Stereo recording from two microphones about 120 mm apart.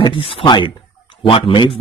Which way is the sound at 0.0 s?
45° left (ahead or behind).